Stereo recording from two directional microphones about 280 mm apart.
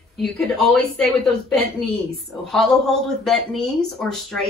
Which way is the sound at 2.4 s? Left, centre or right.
Centre.